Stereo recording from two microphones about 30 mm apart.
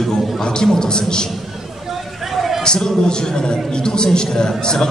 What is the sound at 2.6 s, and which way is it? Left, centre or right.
A man's voice, left.